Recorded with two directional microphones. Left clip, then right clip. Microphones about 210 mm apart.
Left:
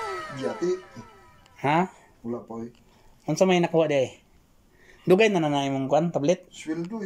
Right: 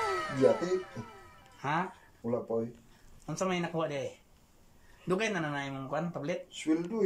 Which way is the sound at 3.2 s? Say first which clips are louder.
Left 12 dB; 45° left (ahead or behind).